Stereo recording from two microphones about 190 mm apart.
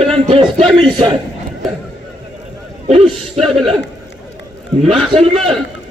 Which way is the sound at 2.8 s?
30° right (ahead or behind).